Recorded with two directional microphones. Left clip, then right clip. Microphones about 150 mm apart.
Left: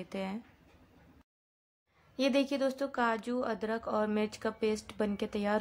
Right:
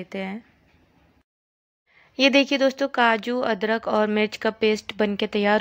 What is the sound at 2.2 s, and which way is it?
Speech, 30° right (ahead or behind).